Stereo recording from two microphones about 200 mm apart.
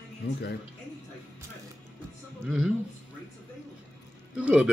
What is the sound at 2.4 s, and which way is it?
Speech, 5° right (ahead or behind).